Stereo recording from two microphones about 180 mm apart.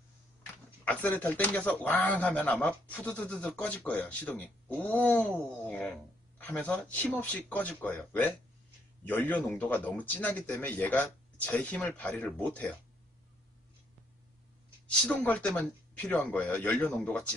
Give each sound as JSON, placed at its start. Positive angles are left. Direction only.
{"t": 0.8, "sound": "speech", "side_deg": 10}
{"t": 14.9, "sound": "speech", "side_deg": 5}